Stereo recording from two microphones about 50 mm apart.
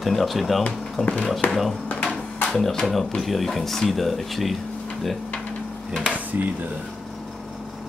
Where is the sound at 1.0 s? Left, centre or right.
Left.